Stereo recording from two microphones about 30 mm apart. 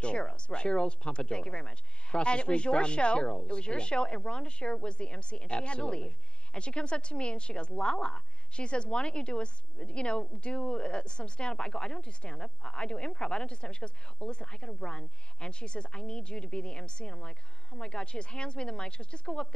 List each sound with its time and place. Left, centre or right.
0.0 s a woman's voice: left